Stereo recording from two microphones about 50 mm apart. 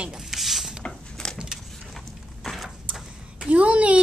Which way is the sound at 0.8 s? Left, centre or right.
Centre.